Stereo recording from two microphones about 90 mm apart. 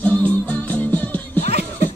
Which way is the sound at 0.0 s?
15° left (ahead or behind).